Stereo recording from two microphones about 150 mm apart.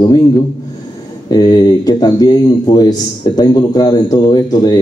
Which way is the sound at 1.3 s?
25° left (ahead or behind).